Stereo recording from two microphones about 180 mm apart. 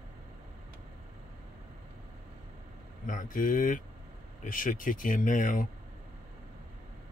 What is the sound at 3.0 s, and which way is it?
Speech, 50° left (ahead or behind).